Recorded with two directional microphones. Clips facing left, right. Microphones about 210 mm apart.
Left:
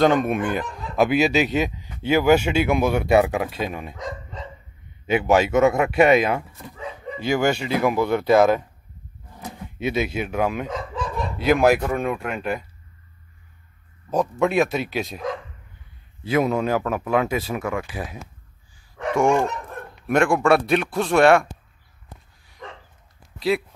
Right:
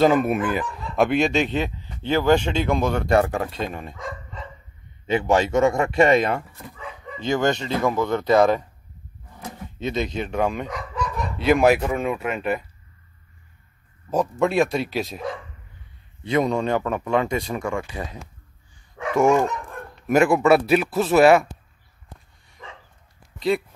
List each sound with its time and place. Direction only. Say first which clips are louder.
0.0 s speech: right 1 dB; 5° right (ahead or behind)
4.0 s dog: left 2 dB; 20° left (ahead or behind)
5.0 s speech: left 1 dB; 5° left (ahead or behind)
10.7 s chicken: left 1 dB; 25° left (ahead or behind)
11.3 s speech: even; centre (ahead or behind)
14.1 s speech: even; centre (ahead or behind)
16.3 s speech: left 1 dB; 5° left (ahead or behind)
18.8 s dog: right 1 dB; 5° right (ahead or behind)
20.0 s speech: right 2 dB; 5° right (ahead or behind)